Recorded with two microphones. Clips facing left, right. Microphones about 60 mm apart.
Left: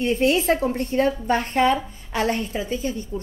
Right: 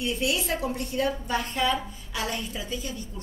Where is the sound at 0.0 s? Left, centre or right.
Left.